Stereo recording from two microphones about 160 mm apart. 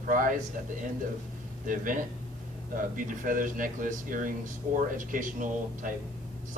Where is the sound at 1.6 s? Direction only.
55° right (ahead or behind).